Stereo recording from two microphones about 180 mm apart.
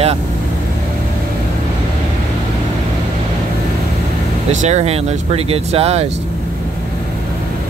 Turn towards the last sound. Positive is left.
turn(degrees=-35)  # may be behind; listen again after turning